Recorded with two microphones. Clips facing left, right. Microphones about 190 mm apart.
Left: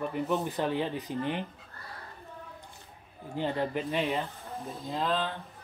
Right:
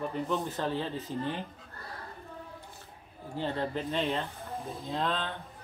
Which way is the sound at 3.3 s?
15° left (ahead or behind).